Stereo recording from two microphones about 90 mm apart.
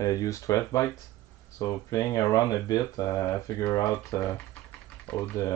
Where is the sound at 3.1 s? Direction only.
30° left (ahead or behind).